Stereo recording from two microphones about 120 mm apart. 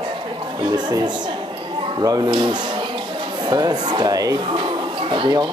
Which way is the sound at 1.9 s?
30° right (ahead or behind).